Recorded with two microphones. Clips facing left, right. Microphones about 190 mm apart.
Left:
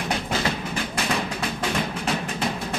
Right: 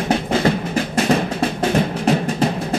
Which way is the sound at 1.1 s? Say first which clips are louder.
Right 8 dB; 40° right (ahead or behind).